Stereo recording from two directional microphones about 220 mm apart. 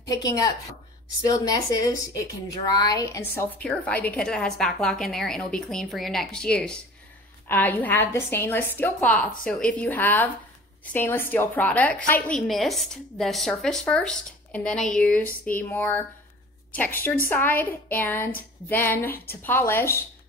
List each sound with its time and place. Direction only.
0.1 s a woman's voice: 15° left (ahead or behind)
2.1 s a woman's voice: 20° left (ahead or behind)
19.0 s a woman's voice: 40° left (ahead or behind)
19.4 s a woman's voice: 10° left (ahead or behind)